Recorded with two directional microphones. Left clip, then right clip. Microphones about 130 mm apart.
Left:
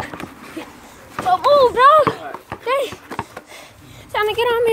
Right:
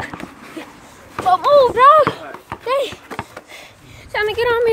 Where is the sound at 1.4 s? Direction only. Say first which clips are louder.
Right 1 dB; 30° right (ahead or behind).